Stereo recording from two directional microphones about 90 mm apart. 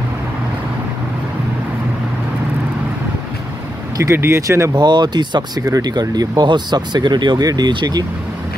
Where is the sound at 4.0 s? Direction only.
30° right (ahead or behind).